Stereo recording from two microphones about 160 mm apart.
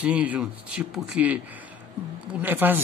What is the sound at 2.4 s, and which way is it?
Speech, 10° right (ahead or behind).